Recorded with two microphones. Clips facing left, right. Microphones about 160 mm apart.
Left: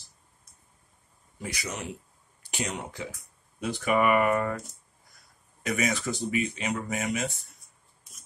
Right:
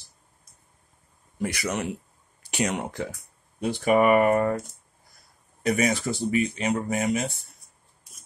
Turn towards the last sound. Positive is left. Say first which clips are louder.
# right 5 dB
turn(degrees=-35)  # may be behind; listen again after turning